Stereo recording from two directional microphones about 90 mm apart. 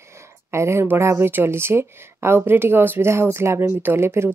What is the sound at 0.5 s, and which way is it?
Speech, 30° right (ahead or behind).